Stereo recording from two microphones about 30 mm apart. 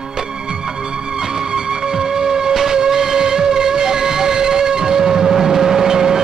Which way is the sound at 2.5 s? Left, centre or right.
Centre.